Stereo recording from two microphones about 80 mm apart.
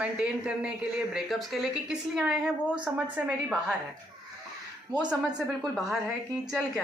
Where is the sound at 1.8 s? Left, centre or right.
Centre.